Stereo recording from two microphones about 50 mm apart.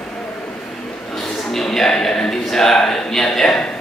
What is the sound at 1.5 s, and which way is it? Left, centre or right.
A man's voice, centre.